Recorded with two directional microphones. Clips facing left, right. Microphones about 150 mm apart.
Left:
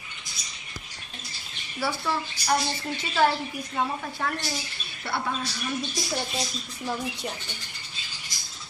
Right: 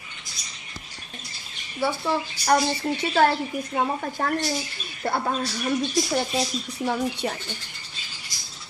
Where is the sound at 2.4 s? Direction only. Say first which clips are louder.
Right 5 dB; 50° right (ahead or behind).